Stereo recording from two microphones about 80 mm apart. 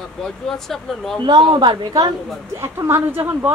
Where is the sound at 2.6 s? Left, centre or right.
Right.